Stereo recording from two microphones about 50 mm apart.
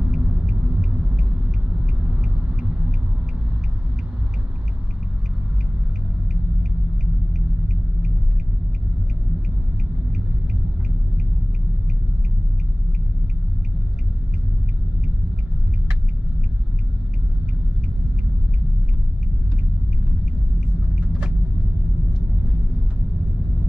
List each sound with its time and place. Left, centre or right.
0.1 s a sound: centre
7.3 s rumble: centre
20.9 s vehicle: right